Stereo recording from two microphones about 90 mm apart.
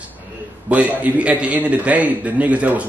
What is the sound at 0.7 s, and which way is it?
A man's voice, 15° right (ahead or behind).